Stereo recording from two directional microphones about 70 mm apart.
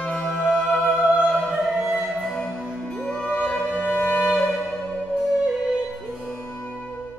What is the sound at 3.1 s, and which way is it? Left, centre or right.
Music, centre.